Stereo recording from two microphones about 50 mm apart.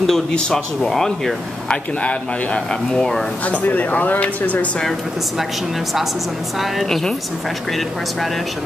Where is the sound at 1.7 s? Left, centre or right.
Left; by 3.3 s centre.